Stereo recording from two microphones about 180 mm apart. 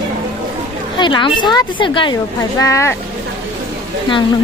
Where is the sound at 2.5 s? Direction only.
15° left (ahead or behind).